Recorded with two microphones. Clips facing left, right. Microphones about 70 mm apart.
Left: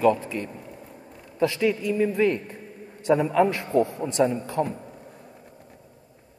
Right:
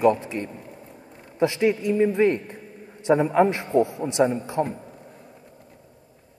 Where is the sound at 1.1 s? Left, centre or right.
Right.